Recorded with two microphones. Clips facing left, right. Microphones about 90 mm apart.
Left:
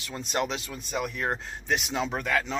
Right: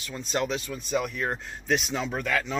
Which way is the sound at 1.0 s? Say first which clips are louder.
Even; 20° left (ahead or behind).